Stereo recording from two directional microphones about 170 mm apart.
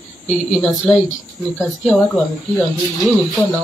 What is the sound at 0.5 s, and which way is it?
Speech, centre (ahead or behind).